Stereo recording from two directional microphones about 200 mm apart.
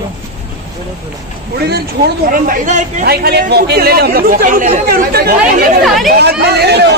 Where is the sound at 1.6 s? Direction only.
55° right (ahead or behind); by 3.0 s 40° right (ahead or behind).